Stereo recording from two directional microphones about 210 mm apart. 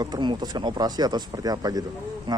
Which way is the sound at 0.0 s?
20° right (ahead or behind).